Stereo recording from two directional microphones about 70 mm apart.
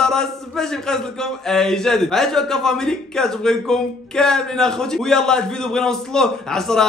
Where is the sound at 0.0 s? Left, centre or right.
Centre.